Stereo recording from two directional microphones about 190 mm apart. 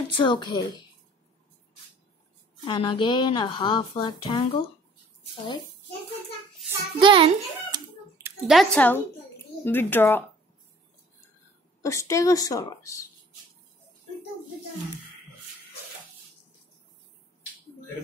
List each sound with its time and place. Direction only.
0.1 s speech: 25° left (ahead or behind)
2.6 s speech: 25° left (ahead or behind)
7.0 s a child's voice: 30° right (ahead or behind)
8.2 s a woman's voice: centre (ahead or behind)
11.8 s a woman's voice: 15° left (ahead or behind)